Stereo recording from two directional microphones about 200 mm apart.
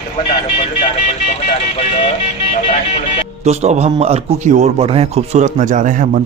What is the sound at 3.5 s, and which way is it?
A man's voice, 35° right (ahead or behind).